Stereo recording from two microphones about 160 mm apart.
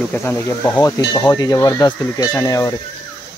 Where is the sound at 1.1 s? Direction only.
25° left (ahead or behind).